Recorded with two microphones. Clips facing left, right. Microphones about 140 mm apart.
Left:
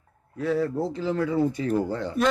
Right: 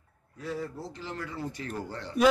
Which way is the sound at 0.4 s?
75° left (ahead or behind).